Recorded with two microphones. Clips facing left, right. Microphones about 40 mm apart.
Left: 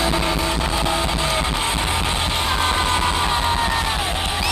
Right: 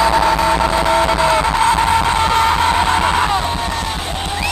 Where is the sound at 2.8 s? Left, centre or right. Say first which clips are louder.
Right 5 dB; right.